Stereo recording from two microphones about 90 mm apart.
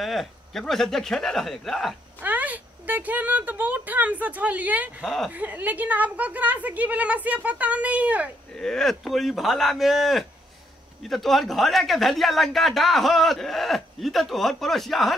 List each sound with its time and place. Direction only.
0.0 s a man's voice: centre (ahead or behind)
2.2 s a woman's voice: 20° right (ahead or behind)
5.0 s a man's voice: centre (ahead or behind)
5.3 s a woman's voice: 20° right (ahead or behind)
8.5 s a man's voice: 5° left (ahead or behind)